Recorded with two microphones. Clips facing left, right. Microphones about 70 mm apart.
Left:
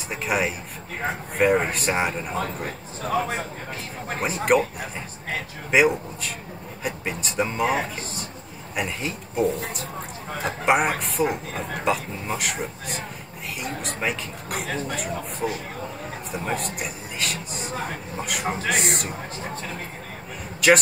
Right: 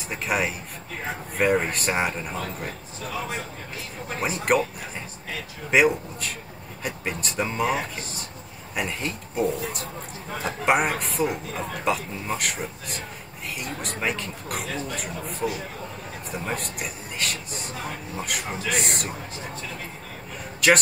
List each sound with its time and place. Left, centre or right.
0.1 s speech: centre
2.3 s speech: left
4.2 s speech: centre
5.7 s speech: centre
8.7 s speech: centre
20.6 s speech: centre